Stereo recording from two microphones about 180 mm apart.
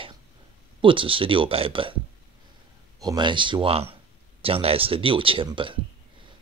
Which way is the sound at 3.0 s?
25° right (ahead or behind).